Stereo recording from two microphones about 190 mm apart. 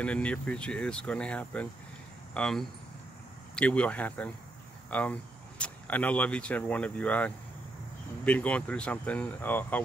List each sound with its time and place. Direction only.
0.0 s speech: 5° left (ahead or behind)
4.8 s a sound: 5° left (ahead or behind)
5.6 s speech: 10° left (ahead or behind)